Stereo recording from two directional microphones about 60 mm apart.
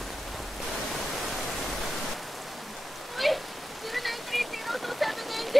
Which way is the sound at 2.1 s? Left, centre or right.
Centre.